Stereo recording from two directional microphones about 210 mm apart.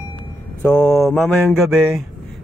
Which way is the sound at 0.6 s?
5° left (ahead or behind).